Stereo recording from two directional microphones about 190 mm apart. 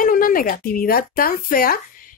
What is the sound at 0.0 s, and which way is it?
Speech, 50° left (ahead or behind).